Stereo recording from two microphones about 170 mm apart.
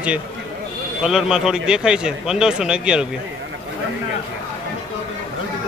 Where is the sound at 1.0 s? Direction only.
5° right (ahead or behind).